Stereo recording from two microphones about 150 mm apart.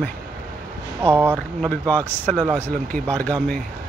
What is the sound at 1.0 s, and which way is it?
Speech, 15° right (ahead or behind).